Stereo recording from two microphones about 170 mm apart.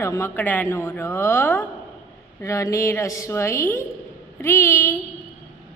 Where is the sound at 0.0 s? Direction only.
15° left (ahead or behind).